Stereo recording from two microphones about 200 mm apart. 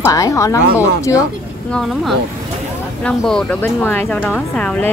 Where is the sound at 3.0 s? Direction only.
5° left (ahead or behind).